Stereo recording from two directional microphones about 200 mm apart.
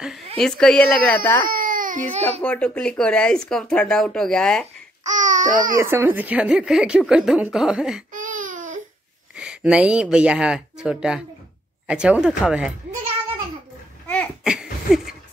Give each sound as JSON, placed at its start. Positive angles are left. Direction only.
{"t": 0.4, "sound": "a woman's voice", "side_deg": 5}
{"t": 1.4, "sound": "baby cry", "side_deg": -45}
{"t": 2.4, "sound": "a woman's voice", "side_deg": 5}
{"t": 5.0, "sound": "babbling", "side_deg": -40}
{"t": 5.8, "sound": "a woman's voice", "side_deg": -15}
{"t": 8.1, "sound": "baby cry", "side_deg": -40}
{"t": 9.3, "sound": "a woman's voice", "side_deg": -5}
{"t": 14.0, "sound": "cough", "side_deg": 5}
{"t": 14.4, "sound": "a sound", "side_deg": -5}